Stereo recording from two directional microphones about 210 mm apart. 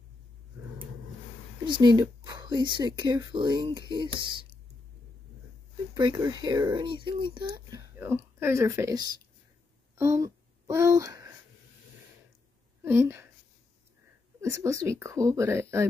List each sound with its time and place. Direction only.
1.6 s speech: 20° right (ahead or behind)
5.9 s speech: 20° right (ahead or behind)
12.8 s speech: 10° right (ahead or behind)
14.4 s speech: 15° right (ahead or behind)